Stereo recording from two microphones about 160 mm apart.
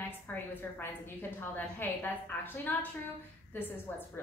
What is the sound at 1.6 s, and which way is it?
A woman's voice, 10° left (ahead or behind).